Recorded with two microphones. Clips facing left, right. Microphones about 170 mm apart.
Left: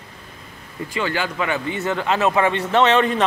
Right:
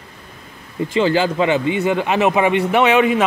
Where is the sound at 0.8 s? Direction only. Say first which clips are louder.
Right 8 dB; 25° right (ahead or behind).